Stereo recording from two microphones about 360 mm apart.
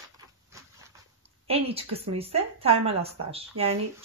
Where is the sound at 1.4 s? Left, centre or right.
Centre.